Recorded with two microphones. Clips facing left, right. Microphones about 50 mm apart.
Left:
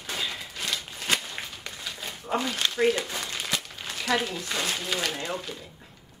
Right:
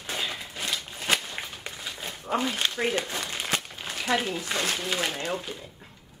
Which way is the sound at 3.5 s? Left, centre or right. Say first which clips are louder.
Right 2 dB; right.